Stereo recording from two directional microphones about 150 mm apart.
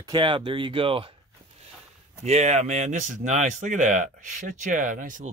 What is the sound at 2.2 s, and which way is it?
Speech, 50° right (ahead or behind).